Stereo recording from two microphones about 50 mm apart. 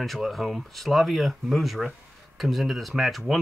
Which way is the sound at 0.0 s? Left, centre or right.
Centre.